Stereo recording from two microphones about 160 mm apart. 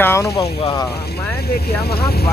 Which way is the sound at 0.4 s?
20° left (ahead or behind).